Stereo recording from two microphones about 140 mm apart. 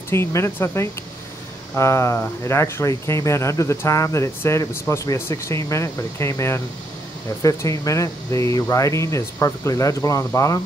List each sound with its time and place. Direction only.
0.1 s speech: 20° left (ahead or behind)